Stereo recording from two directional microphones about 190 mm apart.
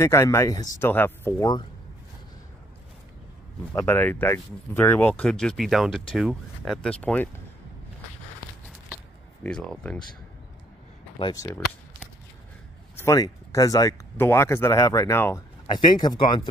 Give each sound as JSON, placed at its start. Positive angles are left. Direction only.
{"t": 0.0, "sound": "speech", "side_deg": 15}
{"t": 3.7, "sound": "speech", "side_deg": 10}
{"t": 8.6, "sound": "a sound", "side_deg": -5}
{"t": 9.4, "sound": "speech", "side_deg": 5}
{"t": 11.1, "sound": "speech", "side_deg": 20}
{"t": 12.9, "sound": "speech", "side_deg": 15}